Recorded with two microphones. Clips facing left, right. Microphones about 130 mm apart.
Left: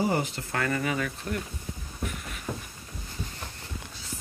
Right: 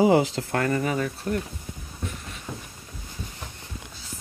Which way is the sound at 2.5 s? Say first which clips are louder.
Left 2 dB; centre (ahead or behind).